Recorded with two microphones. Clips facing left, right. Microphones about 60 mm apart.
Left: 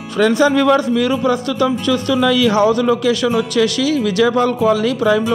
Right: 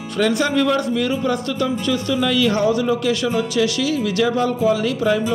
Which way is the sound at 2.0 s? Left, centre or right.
Left.